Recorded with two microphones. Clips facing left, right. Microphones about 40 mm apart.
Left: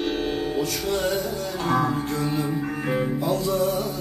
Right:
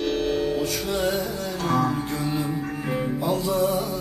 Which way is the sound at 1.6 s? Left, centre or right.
Centre.